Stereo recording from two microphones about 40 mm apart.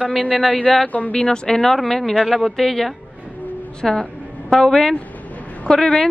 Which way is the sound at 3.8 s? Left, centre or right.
Centre.